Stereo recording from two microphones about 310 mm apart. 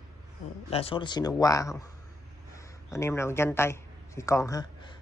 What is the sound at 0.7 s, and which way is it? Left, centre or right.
Speech, centre.